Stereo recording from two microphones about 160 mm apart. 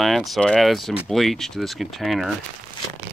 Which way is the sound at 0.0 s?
Centre (ahead or behind).